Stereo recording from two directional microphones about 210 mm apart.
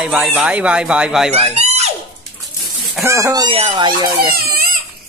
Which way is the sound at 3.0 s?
15° right (ahead or behind).